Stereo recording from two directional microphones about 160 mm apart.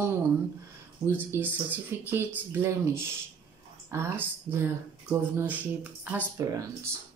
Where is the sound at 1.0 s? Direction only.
15° right (ahead or behind).